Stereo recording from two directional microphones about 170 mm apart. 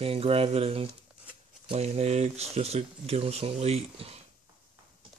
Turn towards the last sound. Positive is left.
turn(degrees=-35)  # may be behind; listen again after turning